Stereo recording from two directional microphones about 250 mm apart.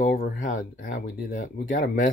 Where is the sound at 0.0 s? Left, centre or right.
Left.